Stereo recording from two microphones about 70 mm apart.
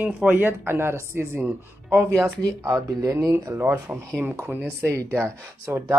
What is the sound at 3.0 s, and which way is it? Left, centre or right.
Speech, right.